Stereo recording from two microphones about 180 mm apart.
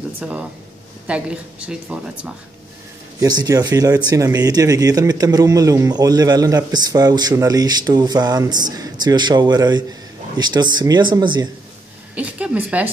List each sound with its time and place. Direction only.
0.2 s a woman's voice: 5° right (ahead or behind)
3.2 s speech: 20° right (ahead or behind)
12.2 s a woman's voice: 5° right (ahead or behind)